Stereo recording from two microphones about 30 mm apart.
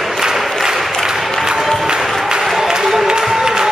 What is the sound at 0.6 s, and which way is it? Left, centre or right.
Applause, centre.